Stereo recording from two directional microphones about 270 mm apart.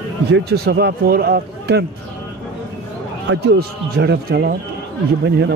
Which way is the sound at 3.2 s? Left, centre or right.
Right.